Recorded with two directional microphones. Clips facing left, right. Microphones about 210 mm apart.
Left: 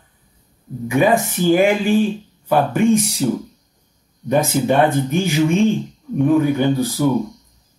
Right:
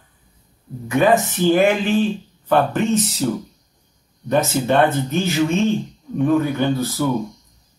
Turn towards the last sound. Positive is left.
turn(degrees=15)  # may be behind; listen again after turning